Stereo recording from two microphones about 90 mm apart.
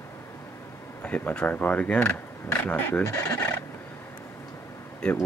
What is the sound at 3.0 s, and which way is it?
Speech, 35° left (ahead or behind).